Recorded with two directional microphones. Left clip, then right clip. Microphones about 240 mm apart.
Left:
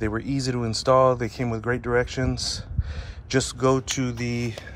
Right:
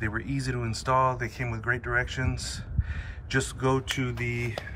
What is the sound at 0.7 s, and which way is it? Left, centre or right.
Speech, left.